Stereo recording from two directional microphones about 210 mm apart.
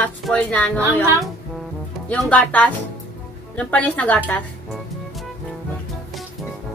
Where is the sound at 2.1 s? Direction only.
5° left (ahead or behind).